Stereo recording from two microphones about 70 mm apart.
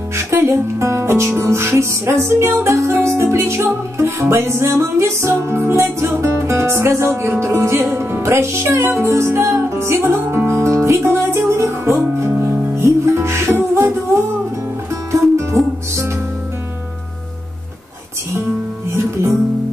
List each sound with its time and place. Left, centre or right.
0.1 s music: right
18.9 s music: right